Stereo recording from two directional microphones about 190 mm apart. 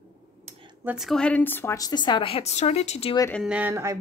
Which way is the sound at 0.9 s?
Centre (ahead or behind).